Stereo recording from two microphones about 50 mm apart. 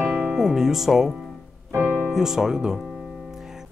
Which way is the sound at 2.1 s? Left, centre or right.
Centre.